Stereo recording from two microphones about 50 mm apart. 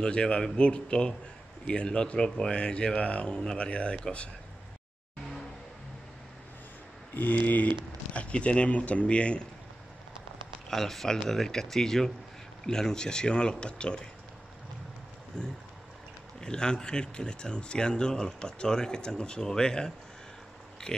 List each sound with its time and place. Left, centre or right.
0.0 s speech: centre
7.2 s speech: left
7.6 s speech: left
10.7 s speech: centre
15.3 s speech: centre